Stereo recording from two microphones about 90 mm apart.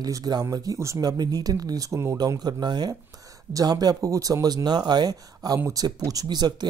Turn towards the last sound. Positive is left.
turn(degrees=-50)  # may be behind; listen again after turning